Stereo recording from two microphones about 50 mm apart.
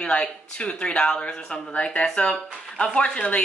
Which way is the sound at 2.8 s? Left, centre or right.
Left.